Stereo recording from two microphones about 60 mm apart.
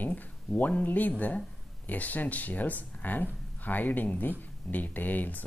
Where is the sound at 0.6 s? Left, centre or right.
Left.